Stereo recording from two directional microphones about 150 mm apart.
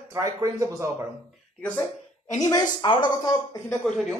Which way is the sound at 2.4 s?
30° left (ahead or behind).